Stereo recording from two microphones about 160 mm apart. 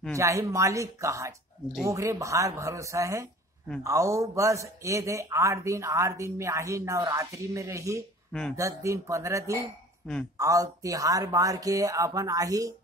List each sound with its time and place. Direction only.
0.1 s speech: 20° right (ahead or behind)
8.3 s speech: 5° left (ahead or behind)
8.5 s speech: 20° right (ahead or behind)